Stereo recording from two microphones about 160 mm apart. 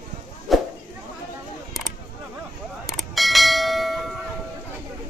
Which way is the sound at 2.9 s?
Centre (ahead or behind).